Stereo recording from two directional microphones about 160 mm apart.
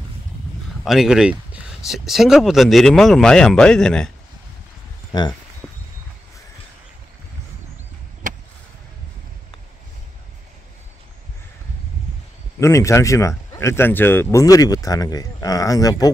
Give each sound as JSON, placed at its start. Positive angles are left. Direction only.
{"t": 0.8, "sound": "speech", "side_deg": -5}
{"t": 5.1, "sound": "speech", "side_deg": 25}
{"t": 8.2, "sound": "a sound", "side_deg": -55}
{"t": 12.5, "sound": "speech", "side_deg": 20}